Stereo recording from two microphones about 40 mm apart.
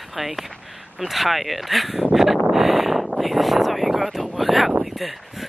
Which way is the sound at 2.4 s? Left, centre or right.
Centre.